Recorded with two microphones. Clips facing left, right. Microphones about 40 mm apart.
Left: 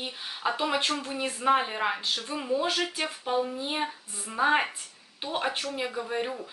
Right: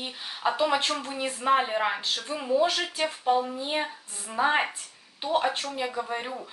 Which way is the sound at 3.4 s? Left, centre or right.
Centre.